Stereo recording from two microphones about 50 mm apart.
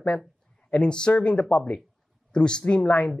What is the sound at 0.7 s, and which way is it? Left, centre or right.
Speech, centre.